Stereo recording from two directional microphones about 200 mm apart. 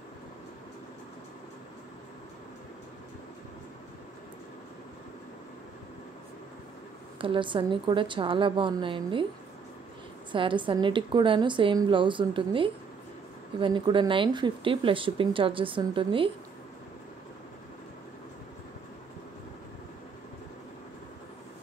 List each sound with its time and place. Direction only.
7.2 s speech: 25° right (ahead or behind)
10.3 s speech: 25° right (ahead or behind)